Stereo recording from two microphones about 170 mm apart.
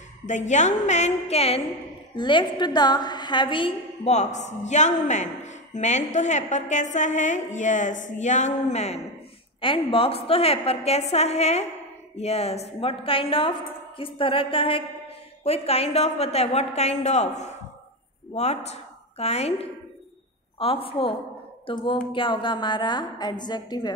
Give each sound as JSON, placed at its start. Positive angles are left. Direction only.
{"t": 0.3, "sound": "a woman's voice", "side_deg": 45}